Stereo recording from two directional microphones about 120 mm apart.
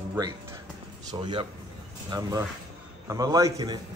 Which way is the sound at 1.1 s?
45° right (ahead or behind).